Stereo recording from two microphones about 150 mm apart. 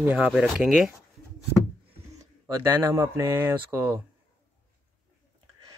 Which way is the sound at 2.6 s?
25° right (ahead or behind).